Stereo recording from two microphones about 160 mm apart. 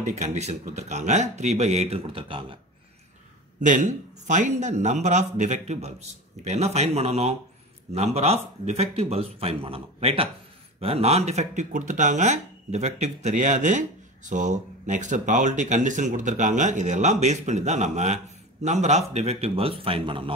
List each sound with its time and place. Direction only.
0.0 s speech: 45° right (ahead or behind)
3.6 s speech: 50° right (ahead or behind); by 20.3 s 35° right (ahead or behind)